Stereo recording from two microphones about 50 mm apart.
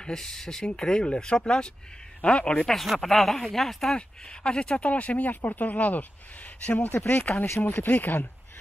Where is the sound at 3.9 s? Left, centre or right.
Centre.